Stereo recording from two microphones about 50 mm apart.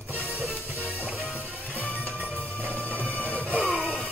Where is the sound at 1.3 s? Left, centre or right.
Left.